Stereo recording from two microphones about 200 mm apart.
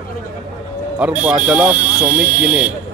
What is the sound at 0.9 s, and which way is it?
Speech, 5° right (ahead or behind).